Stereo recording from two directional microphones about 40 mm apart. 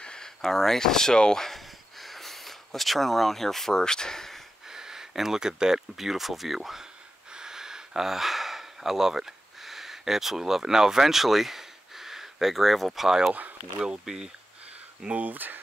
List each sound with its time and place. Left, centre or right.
0.0 s a sound: left
0.4 s speech: centre
1.4 s a sound: centre
4.6 s speech: centre
7.3 s gasp: centre
13.7 s speech: centre
15.0 s speech: right